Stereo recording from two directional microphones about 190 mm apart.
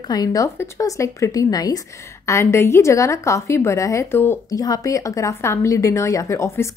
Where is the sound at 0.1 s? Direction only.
20° left (ahead or behind).